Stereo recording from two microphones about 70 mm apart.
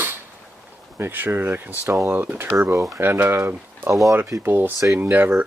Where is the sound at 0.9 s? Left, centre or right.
Right.